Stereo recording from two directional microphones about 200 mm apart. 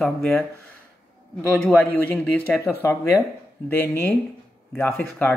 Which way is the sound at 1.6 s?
10° left (ahead or behind).